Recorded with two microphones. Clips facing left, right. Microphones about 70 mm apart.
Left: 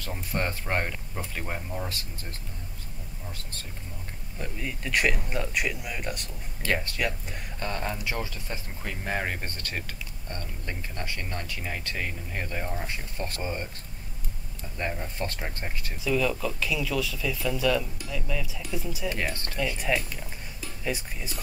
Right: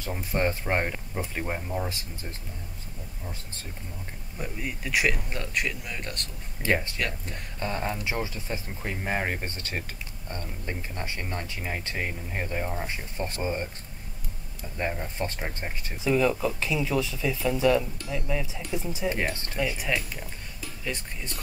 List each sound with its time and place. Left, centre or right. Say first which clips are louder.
0.1 s speech: right 4 dB; centre
4.4 s speech: right 1 dB; centre
6.6 s speech: right 2 dB; right
7.0 s speech: left 1 dB; centre
7.6 s speech: right 2 dB; centre
15.0 s speech: right 1 dB; right
19.8 s speech: left 1 dB; centre